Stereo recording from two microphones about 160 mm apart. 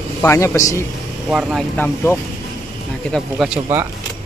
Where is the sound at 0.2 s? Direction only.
15° left (ahead or behind).